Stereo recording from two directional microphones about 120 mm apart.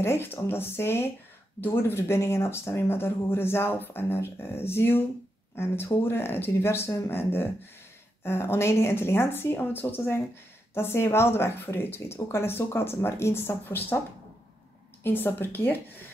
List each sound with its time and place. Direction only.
0.0 s speech: 20° left (ahead or behind)
15.0 s speech: 15° left (ahead or behind)